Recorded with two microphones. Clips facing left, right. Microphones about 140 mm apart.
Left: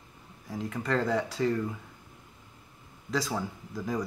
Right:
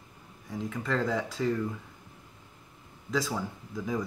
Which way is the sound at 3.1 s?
Centre (ahead or behind).